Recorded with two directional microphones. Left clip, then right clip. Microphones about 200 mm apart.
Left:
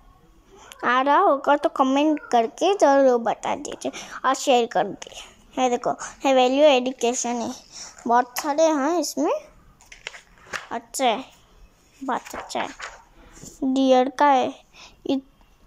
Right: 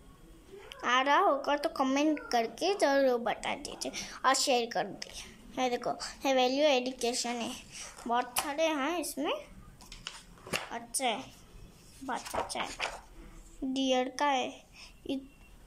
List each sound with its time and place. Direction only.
0.6 s a woman's voice: 20° left (ahead or behind)
10.7 s a woman's voice: 20° left (ahead or behind)